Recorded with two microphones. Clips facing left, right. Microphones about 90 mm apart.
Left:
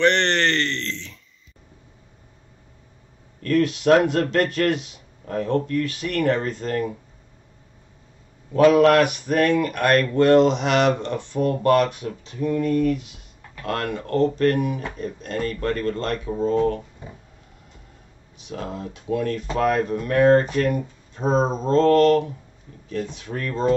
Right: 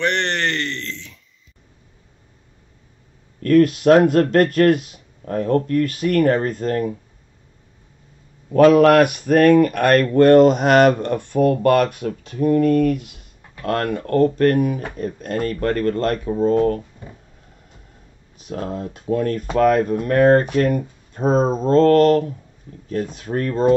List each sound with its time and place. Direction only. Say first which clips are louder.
0.0 s a sound: left 2 dB; 10° right (ahead or behind)
3.4 s speech: right 5 dB; 45° right (ahead or behind)
8.5 s speech: right 3 dB; 50° right (ahead or behind)
18.4 s speech: right 4 dB; 45° right (ahead or behind)